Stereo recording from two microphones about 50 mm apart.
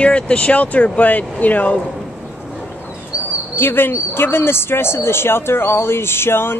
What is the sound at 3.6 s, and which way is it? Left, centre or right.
Speech, left.